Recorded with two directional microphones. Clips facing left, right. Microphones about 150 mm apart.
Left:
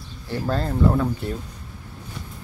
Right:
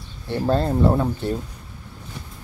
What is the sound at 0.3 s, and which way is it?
Speech, 25° right (ahead or behind).